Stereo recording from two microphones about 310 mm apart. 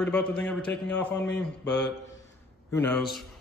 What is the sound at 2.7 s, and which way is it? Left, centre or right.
Speech, centre.